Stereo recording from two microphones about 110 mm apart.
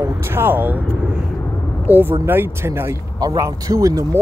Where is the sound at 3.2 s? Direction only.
35° right (ahead or behind).